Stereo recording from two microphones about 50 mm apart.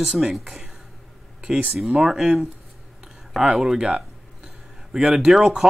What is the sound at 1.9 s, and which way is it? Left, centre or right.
Speech, centre.